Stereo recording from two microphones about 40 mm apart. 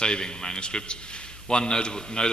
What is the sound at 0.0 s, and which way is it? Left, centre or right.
A man's voice, left.